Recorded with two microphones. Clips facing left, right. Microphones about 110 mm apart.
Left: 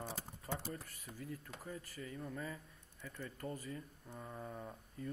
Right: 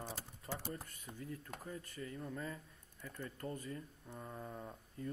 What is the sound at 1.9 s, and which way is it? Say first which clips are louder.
Speech: right 1 dB; centre (ahead or behind).